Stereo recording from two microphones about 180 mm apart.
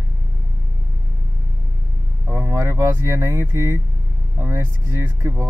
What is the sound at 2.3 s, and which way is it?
Speech, 15° right (ahead or behind).